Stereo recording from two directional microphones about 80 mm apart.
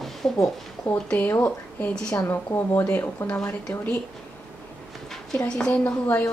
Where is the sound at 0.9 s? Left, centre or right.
Left.